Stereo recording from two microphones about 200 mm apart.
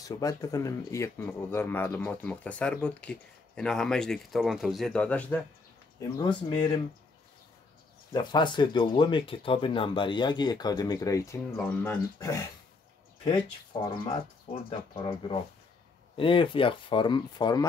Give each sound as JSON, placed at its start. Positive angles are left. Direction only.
{"t": 0.0, "sound": "speech", "side_deg": 15}
{"t": 5.9, "sound": "speech", "side_deg": 20}
{"t": 8.1, "sound": "speech", "side_deg": 20}
{"t": 13.8, "sound": "speech", "side_deg": 25}